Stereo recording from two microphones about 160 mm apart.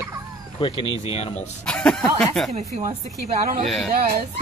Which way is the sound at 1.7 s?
5° left (ahead or behind).